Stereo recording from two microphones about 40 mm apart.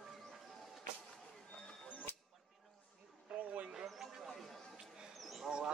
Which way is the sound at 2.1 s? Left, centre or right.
Left.